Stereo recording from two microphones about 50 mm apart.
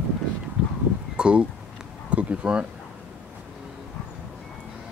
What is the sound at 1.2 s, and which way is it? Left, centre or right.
Speech, right.